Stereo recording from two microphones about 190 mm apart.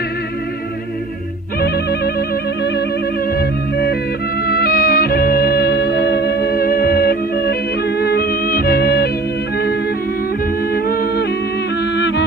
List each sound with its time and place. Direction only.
4.5 s music: 50° left (ahead or behind)
10.7 s music: 55° left (ahead or behind)
12.0 s music: 70° left (ahead or behind)